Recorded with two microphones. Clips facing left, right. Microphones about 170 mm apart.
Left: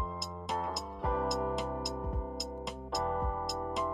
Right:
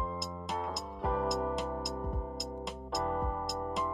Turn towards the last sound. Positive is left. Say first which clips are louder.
# even
turn(degrees=0)  # may be behind; listen again after turning